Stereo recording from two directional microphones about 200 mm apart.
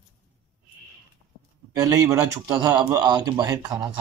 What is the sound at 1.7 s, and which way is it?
A man's voice, 15° right (ahead or behind).